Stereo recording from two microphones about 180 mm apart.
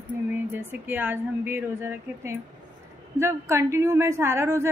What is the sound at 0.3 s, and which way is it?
A woman's voice, 10° right (ahead or behind).